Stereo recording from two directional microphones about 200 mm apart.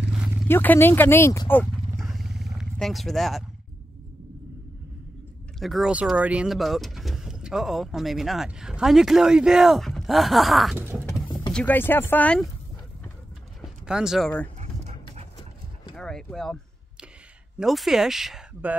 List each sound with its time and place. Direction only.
0.5 s speech: 10° left (ahead or behind)
5.6 s speech: centre (ahead or behind)
11.1 s vehicle: 15° left (ahead or behind)
11.5 s speech: 10° left (ahead or behind)
13.8 s speech: 5° right (ahead or behind)
16.0 s speech: 5° left (ahead or behind)
17.6 s speech: centre (ahead or behind)